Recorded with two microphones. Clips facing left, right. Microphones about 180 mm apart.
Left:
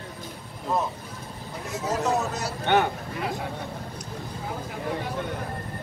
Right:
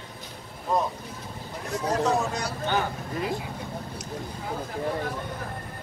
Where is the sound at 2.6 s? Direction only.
70° left (ahead or behind).